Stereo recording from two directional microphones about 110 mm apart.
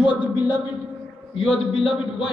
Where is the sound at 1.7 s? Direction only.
55° left (ahead or behind).